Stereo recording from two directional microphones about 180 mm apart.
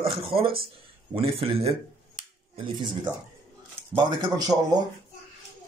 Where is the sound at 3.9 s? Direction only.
20° right (ahead or behind).